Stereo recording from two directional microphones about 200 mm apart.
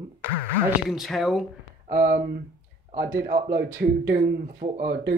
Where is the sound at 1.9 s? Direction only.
40° right (ahead or behind).